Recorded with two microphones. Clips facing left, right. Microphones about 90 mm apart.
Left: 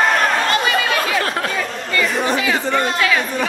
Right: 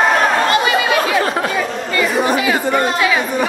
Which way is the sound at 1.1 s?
Centre (ahead or behind).